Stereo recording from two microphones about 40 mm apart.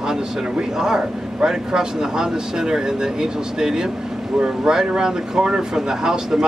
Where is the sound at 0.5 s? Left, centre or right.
Centre.